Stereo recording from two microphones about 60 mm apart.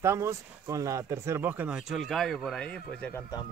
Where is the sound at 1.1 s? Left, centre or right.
Right.